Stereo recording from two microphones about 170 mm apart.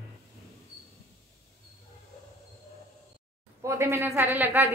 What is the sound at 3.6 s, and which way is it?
A woman's voice, 15° right (ahead or behind).